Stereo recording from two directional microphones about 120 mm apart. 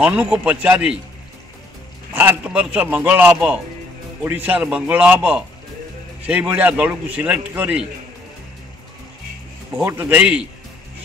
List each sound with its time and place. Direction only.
0.0 s a man's voice: 10° right (ahead or behind)
2.1 s a man's voice: 15° right (ahead or behind)
9.8 s a man's voice: 15° right (ahead or behind)